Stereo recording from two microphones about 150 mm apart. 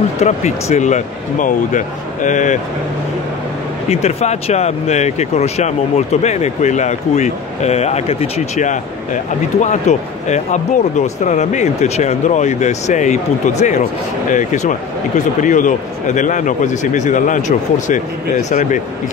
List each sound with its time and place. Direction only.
0.2 s a man's voice: 50° left (ahead or behind)
3.9 s a man's voice: 45° left (ahead or behind)